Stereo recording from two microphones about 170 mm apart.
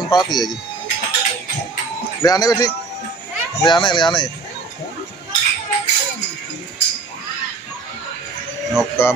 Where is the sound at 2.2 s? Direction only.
20° left (ahead or behind).